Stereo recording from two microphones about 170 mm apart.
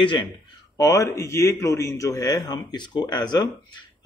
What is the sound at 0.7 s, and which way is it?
Speech, 20° left (ahead or behind).